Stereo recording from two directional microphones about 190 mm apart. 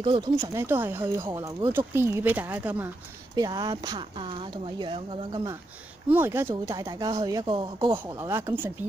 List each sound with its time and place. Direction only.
0.0 s speech: 25° right (ahead or behind)
0.4 s speech: 10° right (ahead or behind)
3.3 s speech: 20° right (ahead or behind)
6.1 s speech: 10° right (ahead or behind)